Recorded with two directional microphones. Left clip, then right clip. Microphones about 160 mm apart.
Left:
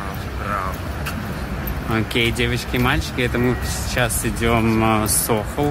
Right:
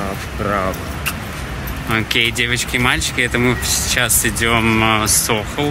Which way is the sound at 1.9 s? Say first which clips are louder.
Right 4 dB; 10° left (ahead or behind).